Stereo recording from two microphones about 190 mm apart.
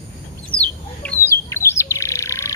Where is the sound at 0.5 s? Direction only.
25° left (ahead or behind).